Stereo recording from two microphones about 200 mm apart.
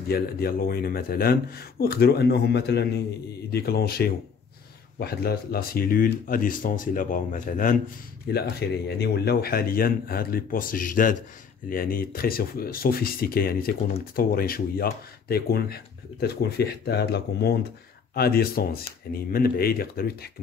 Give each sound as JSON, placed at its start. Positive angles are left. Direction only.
{"t": 0.1, "sound": "speech", "side_deg": 50}
{"t": 8.3, "sound": "speech", "side_deg": 55}